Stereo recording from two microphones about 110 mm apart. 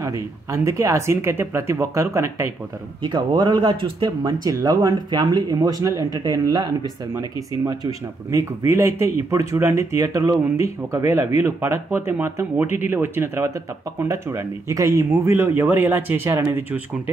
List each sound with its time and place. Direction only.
0.0 s speech: 30° right (ahead or behind)
3.0 s speech: 45° right (ahead or behind); by 16.4 s 20° right (ahead or behind)